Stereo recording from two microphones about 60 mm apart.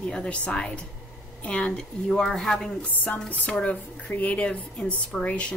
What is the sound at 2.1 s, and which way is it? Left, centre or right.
Speech, centre.